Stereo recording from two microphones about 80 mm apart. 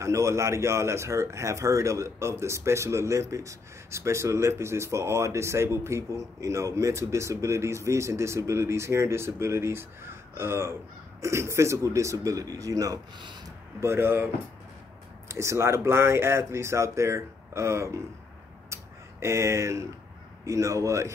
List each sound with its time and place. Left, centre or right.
0.0 s a man's voice: right
13.7 s a man's voice: right
18.7 s a sound: right
20.4 s a man's voice: right